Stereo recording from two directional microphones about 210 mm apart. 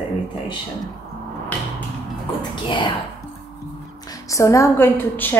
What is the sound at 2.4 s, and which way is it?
Speech, 20° left (ahead or behind).